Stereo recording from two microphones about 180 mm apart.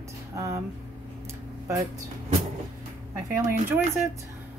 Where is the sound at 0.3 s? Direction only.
15° right (ahead or behind).